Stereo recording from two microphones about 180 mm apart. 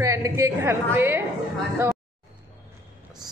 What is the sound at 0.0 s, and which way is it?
A woman's voice, 15° right (ahead or behind).